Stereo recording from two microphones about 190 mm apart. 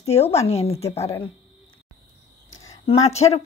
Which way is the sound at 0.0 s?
35° left (ahead or behind).